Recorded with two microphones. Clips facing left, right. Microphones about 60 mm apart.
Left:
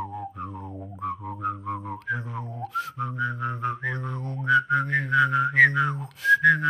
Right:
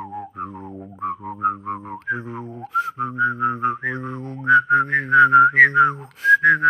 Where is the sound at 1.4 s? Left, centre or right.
Right.